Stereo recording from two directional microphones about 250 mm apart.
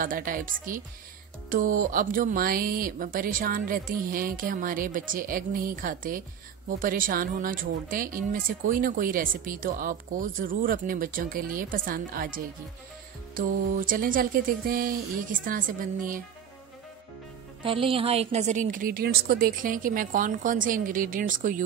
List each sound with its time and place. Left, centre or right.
0.0 s speech: right
17.6 s speech: right